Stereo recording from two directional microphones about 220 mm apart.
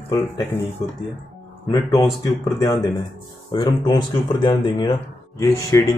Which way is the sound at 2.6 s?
15° left (ahead or behind).